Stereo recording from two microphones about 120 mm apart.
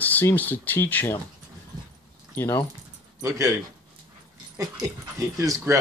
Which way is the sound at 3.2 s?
25° right (ahead or behind).